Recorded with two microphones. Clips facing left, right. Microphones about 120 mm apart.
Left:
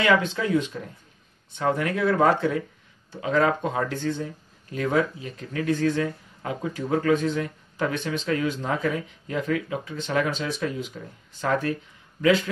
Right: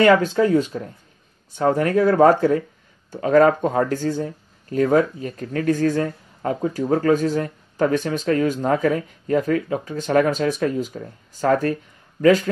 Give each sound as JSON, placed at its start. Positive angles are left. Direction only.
{"t": 0.0, "sound": "speech", "side_deg": -40}